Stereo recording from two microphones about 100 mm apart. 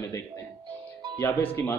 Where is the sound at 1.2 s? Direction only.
20° left (ahead or behind).